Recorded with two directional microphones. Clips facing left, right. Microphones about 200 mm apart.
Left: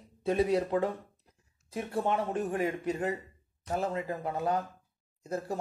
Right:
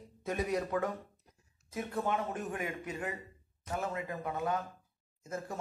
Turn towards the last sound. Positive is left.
turn(degrees=35)  # may be behind; listen again after turning